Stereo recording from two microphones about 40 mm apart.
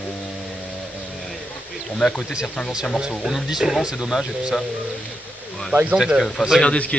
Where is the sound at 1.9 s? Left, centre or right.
Centre.